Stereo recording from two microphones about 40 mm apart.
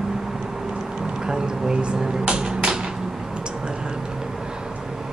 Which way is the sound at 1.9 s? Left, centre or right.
Right.